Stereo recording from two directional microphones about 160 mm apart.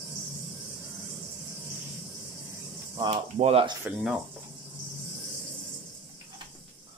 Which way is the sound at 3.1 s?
40° right (ahead or behind).